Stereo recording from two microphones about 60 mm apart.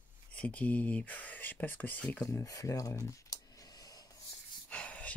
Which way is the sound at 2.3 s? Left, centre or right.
Left.